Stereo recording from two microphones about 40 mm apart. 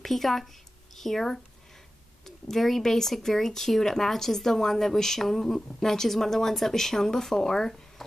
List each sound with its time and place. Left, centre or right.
0.0 s speech: centre